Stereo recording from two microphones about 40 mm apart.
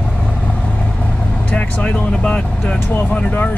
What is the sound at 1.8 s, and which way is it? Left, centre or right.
Speech, left.